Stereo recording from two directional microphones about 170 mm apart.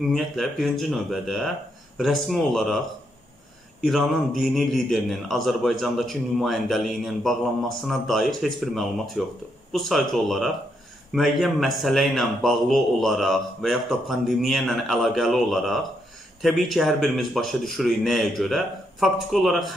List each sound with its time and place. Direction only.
0.0 s a man's voice: centre (ahead or behind)
3.8 s a man's voice: centre (ahead or behind)